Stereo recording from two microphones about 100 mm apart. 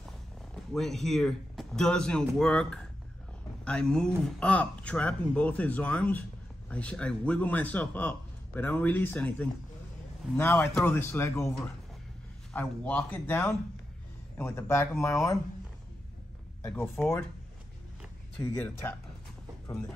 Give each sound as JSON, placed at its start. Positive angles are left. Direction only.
{"t": 0.7, "sound": "speech", "side_deg": 5}
{"t": 12.5, "sound": "speech", "side_deg": 15}
{"t": 16.7, "sound": "speech", "side_deg": 25}
{"t": 18.6, "sound": "speech", "side_deg": 20}